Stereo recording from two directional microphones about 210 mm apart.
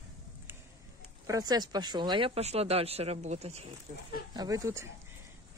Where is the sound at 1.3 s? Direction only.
15° right (ahead or behind).